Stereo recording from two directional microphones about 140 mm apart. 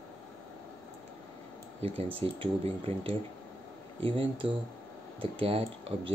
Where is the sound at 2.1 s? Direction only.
40° right (ahead or behind).